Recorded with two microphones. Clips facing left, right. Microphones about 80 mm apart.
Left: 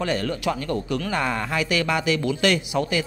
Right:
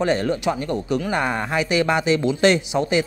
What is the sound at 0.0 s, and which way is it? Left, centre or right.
Speech, right.